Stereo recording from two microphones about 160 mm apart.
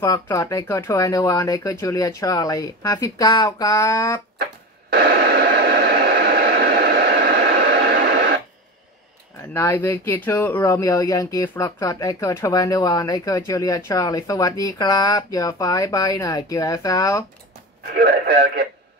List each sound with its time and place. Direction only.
0.0 s speech: 20° left (ahead or behind)
4.8 s radio: 90° right
9.5 s speech: 15° left (ahead or behind)
17.9 s speech: 75° right (ahead or behind)